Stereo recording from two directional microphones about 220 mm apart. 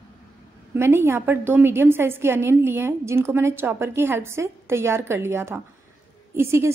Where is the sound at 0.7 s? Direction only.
10° right (ahead or behind).